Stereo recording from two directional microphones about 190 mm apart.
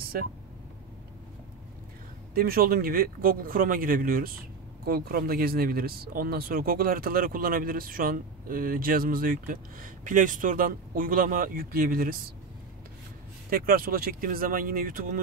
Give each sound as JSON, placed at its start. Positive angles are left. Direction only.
{"t": 2.3, "sound": "speech", "side_deg": -50}
{"t": 13.5, "sound": "speech", "side_deg": -50}